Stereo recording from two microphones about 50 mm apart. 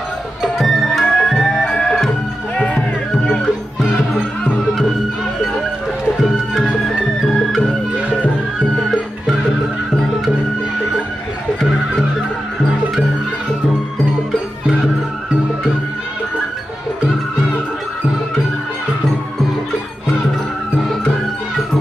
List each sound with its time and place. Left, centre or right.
0.4 s music: centre
1.0 s music: centre
2.5 s music: left
6.2 s music: centre